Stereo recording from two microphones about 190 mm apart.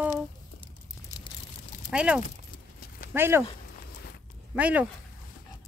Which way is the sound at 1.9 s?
5° right (ahead or behind).